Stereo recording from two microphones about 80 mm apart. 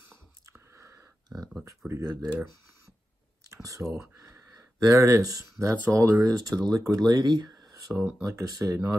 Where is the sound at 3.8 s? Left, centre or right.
Centre.